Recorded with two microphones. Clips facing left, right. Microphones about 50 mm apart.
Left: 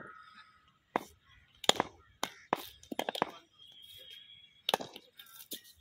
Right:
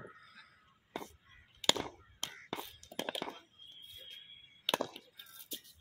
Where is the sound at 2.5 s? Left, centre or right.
Left.